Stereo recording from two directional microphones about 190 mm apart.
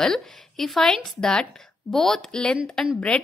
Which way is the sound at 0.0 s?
Centre (ahead or behind).